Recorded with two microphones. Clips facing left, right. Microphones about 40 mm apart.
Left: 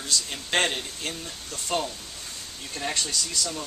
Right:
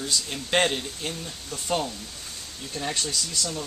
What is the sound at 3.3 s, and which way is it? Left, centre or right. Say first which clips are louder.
Speech: even; centre.